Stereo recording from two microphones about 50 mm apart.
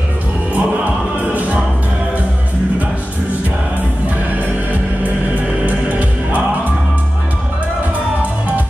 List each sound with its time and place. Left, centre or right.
0.6 s music: right
5.0 s music: right